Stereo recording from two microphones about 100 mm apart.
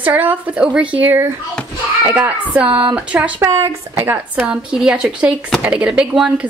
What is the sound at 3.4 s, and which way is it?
A woman's voice, 30° right (ahead or behind).